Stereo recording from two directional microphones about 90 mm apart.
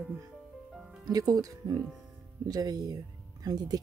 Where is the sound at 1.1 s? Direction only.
45° right (ahead or behind).